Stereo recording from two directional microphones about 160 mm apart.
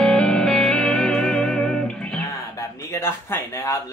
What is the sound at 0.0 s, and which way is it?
Music, 5° left (ahead or behind).